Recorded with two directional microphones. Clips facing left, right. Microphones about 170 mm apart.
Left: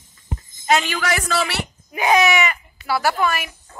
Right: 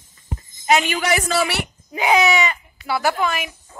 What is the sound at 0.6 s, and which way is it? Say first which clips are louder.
Speech: right 1 dB; 15° right (ahead or behind).